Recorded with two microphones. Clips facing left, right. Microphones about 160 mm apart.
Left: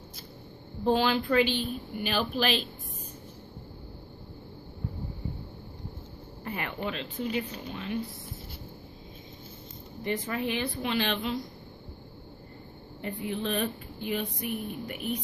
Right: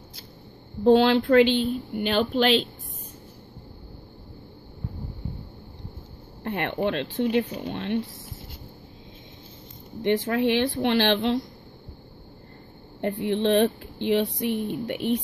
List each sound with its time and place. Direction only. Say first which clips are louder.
0.8 s a woman's voice: right 8 dB; 75° right (ahead or behind)
6.4 s speech: right 8 dB; 70° right (ahead or behind)
10.0 s a woman's voice: right 9 dB; 85° right
13.0 s a woman's voice: right 9 dB; 80° right